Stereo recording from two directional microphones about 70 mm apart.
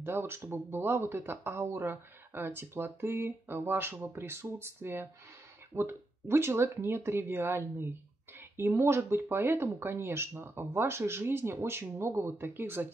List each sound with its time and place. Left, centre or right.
0.1 s speech: right